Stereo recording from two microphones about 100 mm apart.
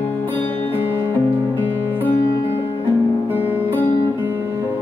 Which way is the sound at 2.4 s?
80° left.